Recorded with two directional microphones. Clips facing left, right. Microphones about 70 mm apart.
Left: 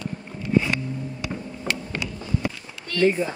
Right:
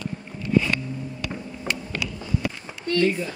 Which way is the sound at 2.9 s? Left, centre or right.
Left.